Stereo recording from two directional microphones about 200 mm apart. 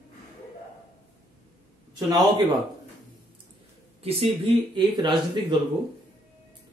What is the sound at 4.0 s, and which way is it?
Speech, 30° right (ahead or behind).